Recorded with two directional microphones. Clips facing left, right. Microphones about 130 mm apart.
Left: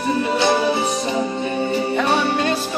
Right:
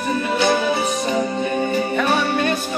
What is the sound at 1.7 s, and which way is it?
Music, 25° left (ahead or behind).